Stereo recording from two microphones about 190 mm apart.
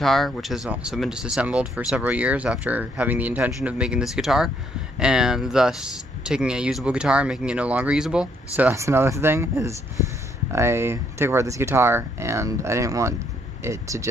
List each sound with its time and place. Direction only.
0.0 s speech: centre (ahead or behind); by 14.0 s 15° right (ahead or behind)